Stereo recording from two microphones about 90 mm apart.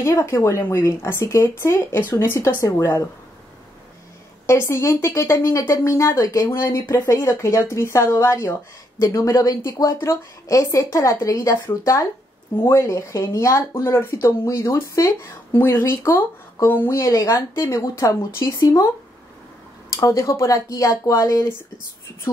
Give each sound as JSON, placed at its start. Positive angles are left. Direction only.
{"t": 0.0, "sound": "speech", "side_deg": 30}
{"t": 4.5, "sound": "speech", "side_deg": 30}
{"t": 6.6, "sound": "speech", "side_deg": 30}
{"t": 16.6, "sound": "speech", "side_deg": 25}
{"t": 17.0, "sound": "speech", "side_deg": 35}
{"t": 20.0, "sound": "speech", "side_deg": 35}